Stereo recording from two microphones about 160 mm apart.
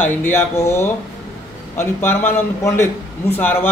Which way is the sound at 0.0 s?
15° left (ahead or behind).